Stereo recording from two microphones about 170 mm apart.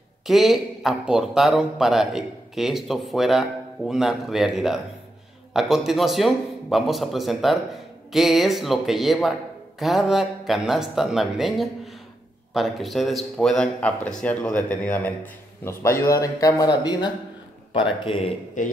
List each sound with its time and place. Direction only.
0.3 s speech: centre (ahead or behind); by 18.3 s 30° left (ahead or behind)
18.6 s speech: 50° left (ahead or behind)